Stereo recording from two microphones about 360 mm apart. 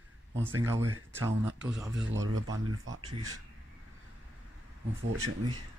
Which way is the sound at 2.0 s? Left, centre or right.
Right.